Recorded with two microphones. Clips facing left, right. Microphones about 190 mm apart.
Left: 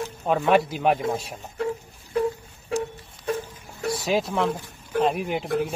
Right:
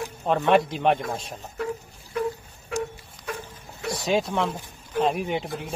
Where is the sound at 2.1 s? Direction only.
30° left (ahead or behind).